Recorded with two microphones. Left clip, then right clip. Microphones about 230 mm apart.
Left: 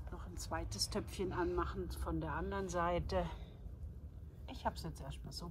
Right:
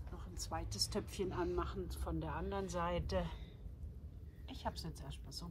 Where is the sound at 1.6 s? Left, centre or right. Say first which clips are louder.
Left 2 dB; right.